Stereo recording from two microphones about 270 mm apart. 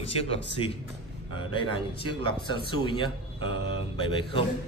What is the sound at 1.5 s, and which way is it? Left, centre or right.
A man's voice, centre.